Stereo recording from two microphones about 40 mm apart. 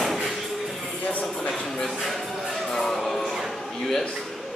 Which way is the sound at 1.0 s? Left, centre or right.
Left.